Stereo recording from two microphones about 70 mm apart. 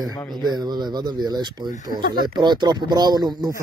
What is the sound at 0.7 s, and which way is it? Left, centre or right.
Speech, right.